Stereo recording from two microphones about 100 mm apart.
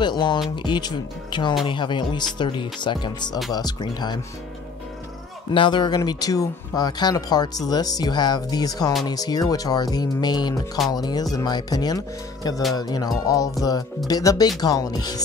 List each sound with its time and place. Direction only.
0.0 s speech: 50° left (ahead or behind)
5.5 s speech: 55° left (ahead or behind)